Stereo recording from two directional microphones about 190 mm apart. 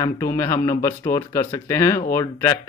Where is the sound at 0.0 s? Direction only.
15° left (ahead or behind).